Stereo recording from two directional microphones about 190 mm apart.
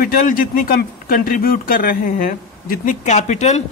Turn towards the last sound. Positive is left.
turn(degrees=35)  # may be behind; listen again after turning